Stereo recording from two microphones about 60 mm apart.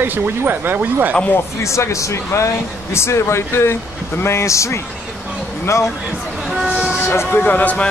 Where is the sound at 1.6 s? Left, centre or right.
Left.